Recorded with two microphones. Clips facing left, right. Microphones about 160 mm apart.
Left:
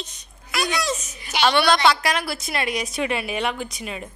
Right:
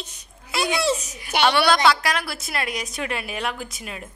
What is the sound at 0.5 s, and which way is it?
Speech, 25° right (ahead or behind).